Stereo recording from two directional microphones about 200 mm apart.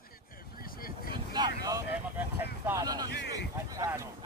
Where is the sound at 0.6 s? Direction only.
45° left (ahead or behind).